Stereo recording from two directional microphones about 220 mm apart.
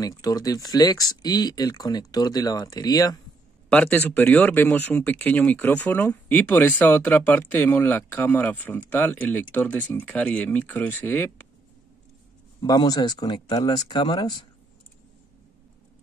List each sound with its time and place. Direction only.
0.0 s speech: 15° left (ahead or behind)
12.6 s speech: 15° left (ahead or behind)